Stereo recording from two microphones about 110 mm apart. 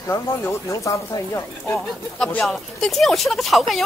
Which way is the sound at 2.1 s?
5° left (ahead or behind).